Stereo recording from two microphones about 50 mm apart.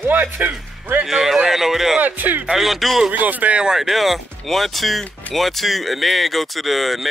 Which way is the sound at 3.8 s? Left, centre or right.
Centre.